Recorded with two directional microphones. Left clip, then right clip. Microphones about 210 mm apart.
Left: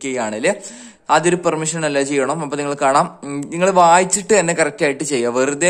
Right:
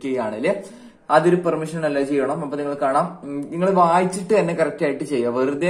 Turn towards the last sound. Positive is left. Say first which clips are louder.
# left 3 dB
turn(degrees=35)  # may be behind; listen again after turning